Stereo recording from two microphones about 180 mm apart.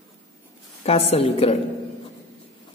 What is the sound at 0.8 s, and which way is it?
Speech, 35° left (ahead or behind).